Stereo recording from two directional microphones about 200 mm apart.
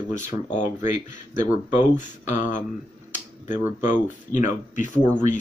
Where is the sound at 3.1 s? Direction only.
40° left (ahead or behind).